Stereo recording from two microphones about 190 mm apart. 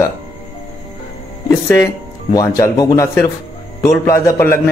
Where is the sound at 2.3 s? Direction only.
20° left (ahead or behind).